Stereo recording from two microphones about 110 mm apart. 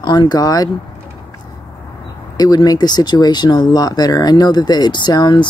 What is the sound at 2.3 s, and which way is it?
Speech, 35° left (ahead or behind).